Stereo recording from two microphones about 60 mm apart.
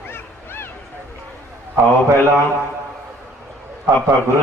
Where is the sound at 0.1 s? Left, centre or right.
Left.